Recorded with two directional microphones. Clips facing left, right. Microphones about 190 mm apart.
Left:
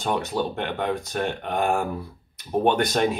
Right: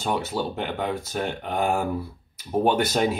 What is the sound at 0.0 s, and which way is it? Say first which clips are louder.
Speech: left 1 dB; 5° right (ahead or behind).